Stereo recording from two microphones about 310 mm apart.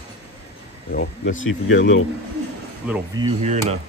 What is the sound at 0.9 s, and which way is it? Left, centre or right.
Speech, left.